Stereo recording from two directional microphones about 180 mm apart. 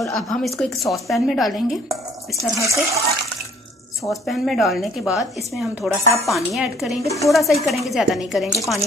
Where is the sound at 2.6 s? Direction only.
15° right (ahead or behind).